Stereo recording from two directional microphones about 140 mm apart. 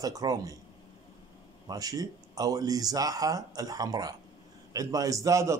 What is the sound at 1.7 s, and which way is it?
A man's voice, 25° right (ahead or behind).